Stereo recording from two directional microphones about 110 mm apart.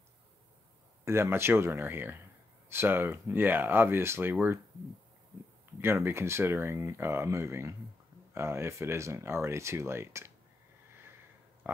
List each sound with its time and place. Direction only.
1.0 s speech: 25° right (ahead or behind)
5.8 s speech: 20° right (ahead or behind)
11.6 s a sound: 15° right (ahead or behind)